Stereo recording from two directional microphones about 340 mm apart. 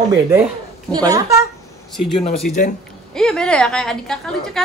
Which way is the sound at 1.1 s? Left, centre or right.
Centre.